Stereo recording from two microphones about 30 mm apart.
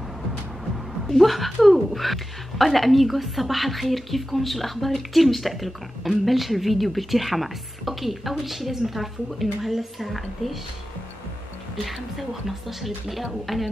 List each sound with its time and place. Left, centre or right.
1.0 s a woman's voice: centre
11.8 s a woman's voice: centre